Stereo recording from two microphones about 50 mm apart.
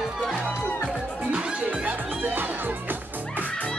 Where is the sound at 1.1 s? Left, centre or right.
Right.